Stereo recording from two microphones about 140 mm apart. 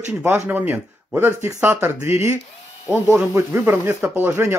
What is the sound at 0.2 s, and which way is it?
Speech, 10° right (ahead or behind).